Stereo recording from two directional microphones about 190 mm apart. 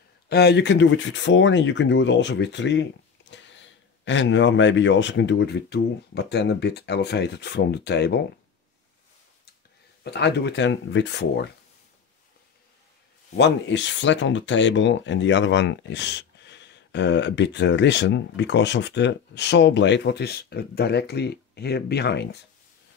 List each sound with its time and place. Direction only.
0.3 s speech: 60° left (ahead or behind)
10.0 s speech: 60° left (ahead or behind)
13.4 s speech: 70° left (ahead or behind)